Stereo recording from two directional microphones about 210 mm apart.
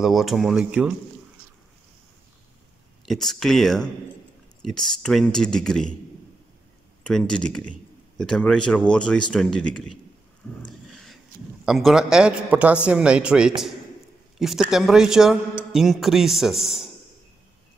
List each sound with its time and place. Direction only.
0.0 s a man's voice: centre (ahead or behind)
3.1 s a man's voice: centre (ahead or behind)
7.0 s a man's voice: 5° left (ahead or behind)
10.9 s a sound: centre (ahead or behind)
11.6 s a man's voice: centre (ahead or behind)
14.7 s a man's voice: centre (ahead or behind)